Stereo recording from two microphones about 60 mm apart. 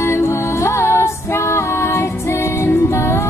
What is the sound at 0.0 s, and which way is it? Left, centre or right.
Music, left.